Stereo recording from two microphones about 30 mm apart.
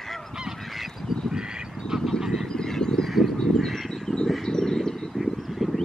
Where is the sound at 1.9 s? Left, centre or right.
Centre.